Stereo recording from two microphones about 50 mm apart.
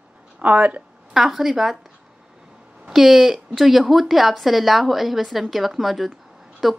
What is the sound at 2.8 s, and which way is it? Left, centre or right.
Speech, centre.